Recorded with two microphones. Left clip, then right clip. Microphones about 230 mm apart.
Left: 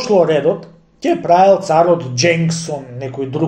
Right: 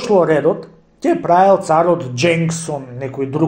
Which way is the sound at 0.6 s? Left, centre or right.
Right.